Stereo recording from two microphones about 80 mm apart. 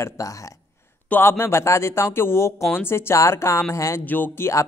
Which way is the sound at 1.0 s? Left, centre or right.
Left.